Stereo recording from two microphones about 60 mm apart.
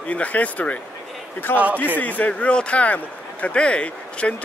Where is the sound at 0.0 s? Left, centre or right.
Left.